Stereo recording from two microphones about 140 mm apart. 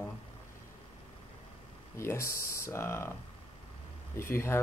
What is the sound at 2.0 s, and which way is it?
Speech, 20° left (ahead or behind).